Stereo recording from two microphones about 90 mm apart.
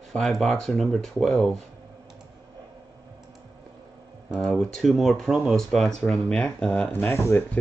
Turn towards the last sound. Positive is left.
turn(degrees=30)  # may be behind; listen again after turning